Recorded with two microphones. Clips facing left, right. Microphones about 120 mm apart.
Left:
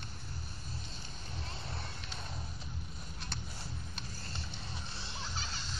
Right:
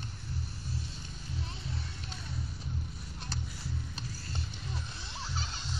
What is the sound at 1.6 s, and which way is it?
Music, 55° left (ahead or behind).